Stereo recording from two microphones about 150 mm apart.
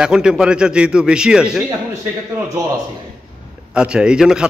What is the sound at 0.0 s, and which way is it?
A man's voice, 5° right (ahead or behind).